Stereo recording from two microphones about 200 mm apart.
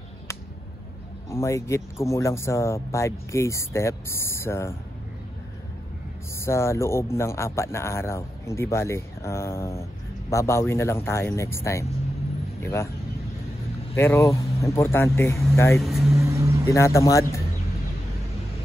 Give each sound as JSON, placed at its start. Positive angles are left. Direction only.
{"t": 1.3, "sound": "speech", "side_deg": 15}
{"t": 6.4, "sound": "speech", "side_deg": 15}
{"t": 13.9, "sound": "speech", "side_deg": 15}
{"t": 15.8, "sound": "speech", "side_deg": 0}
{"t": 16.6, "sound": "speech", "side_deg": 15}